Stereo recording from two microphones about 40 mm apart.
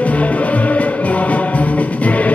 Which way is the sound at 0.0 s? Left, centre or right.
Left.